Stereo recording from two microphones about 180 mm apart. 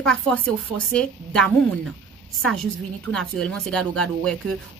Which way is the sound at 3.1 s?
5° left (ahead or behind).